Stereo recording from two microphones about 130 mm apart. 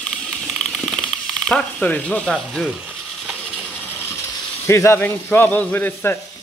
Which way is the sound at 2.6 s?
10° right (ahead or behind).